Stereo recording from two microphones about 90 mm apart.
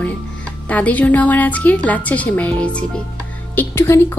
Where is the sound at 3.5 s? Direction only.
25° left (ahead or behind).